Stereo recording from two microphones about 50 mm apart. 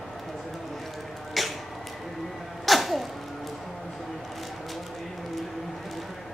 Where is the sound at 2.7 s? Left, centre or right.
Centre.